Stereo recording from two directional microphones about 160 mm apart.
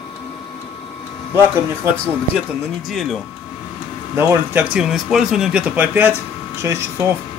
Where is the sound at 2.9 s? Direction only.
Centre (ahead or behind).